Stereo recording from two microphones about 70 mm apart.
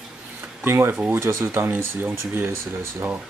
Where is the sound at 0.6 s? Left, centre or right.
Right.